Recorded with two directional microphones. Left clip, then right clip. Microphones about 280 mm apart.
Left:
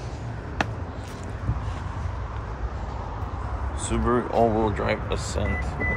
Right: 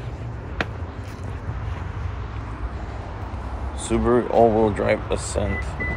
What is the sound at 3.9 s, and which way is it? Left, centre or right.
Speech, centre.